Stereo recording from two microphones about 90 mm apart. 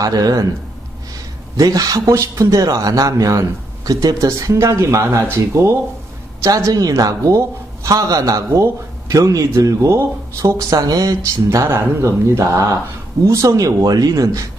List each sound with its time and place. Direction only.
0.0 s a man's voice: 45° right (ahead or behind)
1.6 s speech: 40° right (ahead or behind)
10.4 s speech: 45° right (ahead or behind)